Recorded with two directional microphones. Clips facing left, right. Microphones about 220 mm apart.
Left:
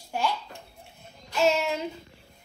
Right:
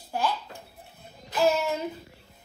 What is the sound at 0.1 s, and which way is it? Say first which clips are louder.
Dishes: even; 5° right (ahead or behind).